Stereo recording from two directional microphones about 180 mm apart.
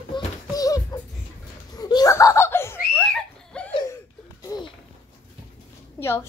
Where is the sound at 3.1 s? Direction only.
5° left (ahead or behind).